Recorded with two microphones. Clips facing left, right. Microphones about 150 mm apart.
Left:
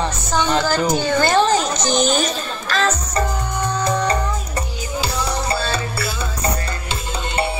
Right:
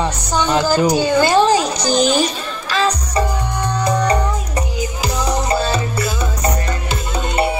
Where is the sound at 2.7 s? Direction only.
15° right (ahead or behind).